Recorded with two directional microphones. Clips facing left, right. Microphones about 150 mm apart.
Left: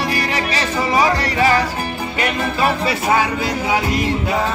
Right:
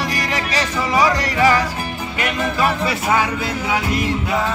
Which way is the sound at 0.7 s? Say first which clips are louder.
Left 1 dB; 30° left (ahead or behind).